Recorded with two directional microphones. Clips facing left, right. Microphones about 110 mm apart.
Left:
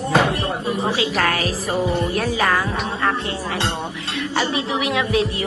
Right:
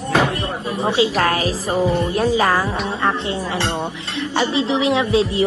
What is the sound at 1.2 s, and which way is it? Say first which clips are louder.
A woman's voice: right 2 dB; 30° right (ahead or behind).